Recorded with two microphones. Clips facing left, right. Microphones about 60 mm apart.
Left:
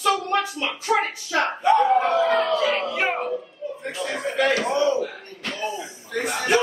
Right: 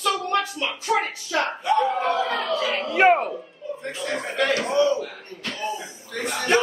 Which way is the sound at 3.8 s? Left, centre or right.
Centre.